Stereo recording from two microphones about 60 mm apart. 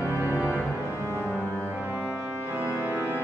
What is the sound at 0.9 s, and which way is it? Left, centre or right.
Music, right.